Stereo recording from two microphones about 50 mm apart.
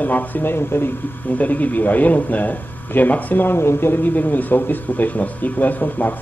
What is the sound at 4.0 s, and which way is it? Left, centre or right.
Speech, left.